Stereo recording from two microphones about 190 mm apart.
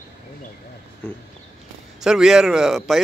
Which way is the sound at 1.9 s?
5° right (ahead or behind).